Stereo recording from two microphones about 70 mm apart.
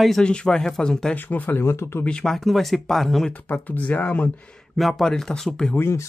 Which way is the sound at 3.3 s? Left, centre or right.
Left.